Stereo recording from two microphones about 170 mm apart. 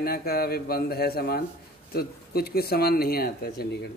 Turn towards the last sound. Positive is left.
turn(degrees=65)  # may be behind; listen again after turning